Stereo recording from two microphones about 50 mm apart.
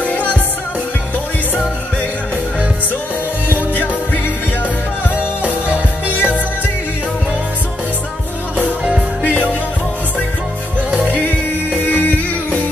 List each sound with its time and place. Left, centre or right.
0.0 s music: left
3.7 s music: left
6.0 s music: left
9.2 s music: left
11.1 s music: left